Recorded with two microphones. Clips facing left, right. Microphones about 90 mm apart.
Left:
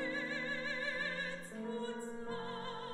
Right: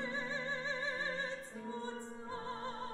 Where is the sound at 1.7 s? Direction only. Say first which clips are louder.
Left 2 dB; 20° right (ahead or behind).